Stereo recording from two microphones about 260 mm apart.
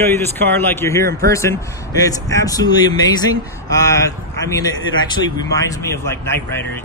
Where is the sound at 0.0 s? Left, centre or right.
Centre.